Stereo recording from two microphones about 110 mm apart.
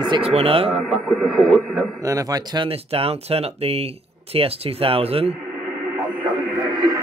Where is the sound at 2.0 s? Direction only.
35° right (ahead or behind).